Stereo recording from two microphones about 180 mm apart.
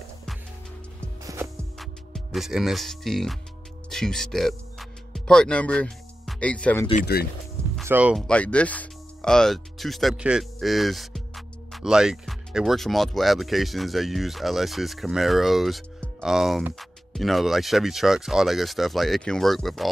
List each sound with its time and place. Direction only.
1.2 s music: 15° right (ahead or behind)
1.8 s speech: centre (ahead or behind)
7.0 s speech: 60° left (ahead or behind)
7.8 s speech: 10° right (ahead or behind)
8.3 s speech: 5° left (ahead or behind)